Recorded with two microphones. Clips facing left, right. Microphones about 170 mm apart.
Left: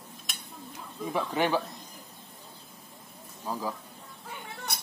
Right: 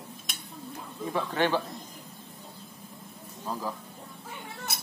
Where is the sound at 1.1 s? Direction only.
10° left (ahead or behind).